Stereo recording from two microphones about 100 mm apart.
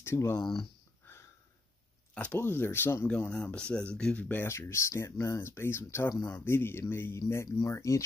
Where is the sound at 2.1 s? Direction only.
15° left (ahead or behind).